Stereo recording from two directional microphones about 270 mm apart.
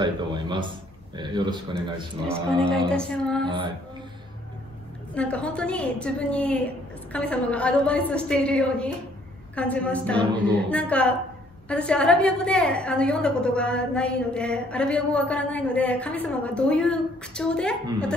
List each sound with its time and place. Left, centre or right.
0.0 s a man's voice: centre
2.2 s a woman's voice: centre
3.4 s speech: centre
5.1 s a woman's voice: centre